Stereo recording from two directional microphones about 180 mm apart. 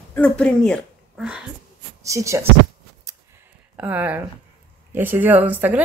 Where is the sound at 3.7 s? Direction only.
10° right (ahead or behind).